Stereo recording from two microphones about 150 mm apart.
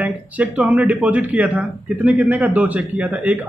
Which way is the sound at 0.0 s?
10° right (ahead or behind).